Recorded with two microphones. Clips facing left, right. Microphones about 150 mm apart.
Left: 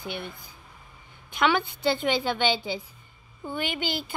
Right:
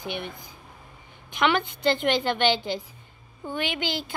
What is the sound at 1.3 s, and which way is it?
Speech, 5° left (ahead or behind).